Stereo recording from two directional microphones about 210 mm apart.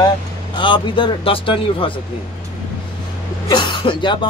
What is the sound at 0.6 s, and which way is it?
Speech, 25° left (ahead or behind).